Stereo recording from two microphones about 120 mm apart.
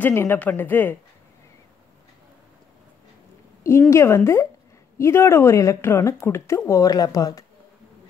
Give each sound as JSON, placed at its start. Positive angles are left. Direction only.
{"t": 0.0, "sound": "speech", "side_deg": 20}
{"t": 3.9, "sound": "a woman's voice", "side_deg": 20}